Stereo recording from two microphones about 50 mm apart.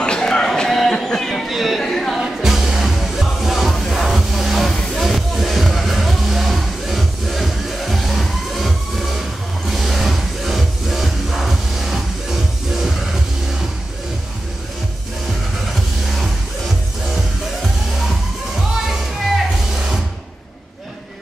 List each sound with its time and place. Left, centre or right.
0.0 s a sound: centre
0.7 s a sound: centre
1.5 s chatter: centre
2.1 s music: centre
5.0 s music: centre
16.2 s music: centre